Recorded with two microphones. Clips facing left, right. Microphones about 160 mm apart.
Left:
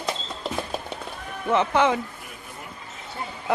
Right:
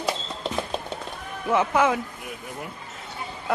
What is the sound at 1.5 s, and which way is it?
Speech, 5° right (ahead or behind).